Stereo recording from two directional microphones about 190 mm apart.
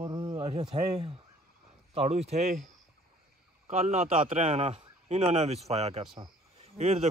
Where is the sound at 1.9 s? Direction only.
35° right (ahead or behind).